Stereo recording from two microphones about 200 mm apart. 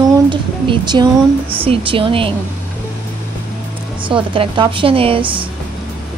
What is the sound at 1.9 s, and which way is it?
Speech, 25° right (ahead or behind).